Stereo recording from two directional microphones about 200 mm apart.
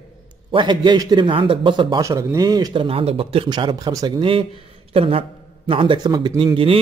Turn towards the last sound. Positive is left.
turn(degrees=-25)  # may be behind; listen again after turning